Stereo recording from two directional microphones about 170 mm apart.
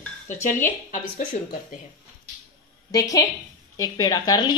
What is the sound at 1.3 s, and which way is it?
Speech, 40° left (ahead or behind).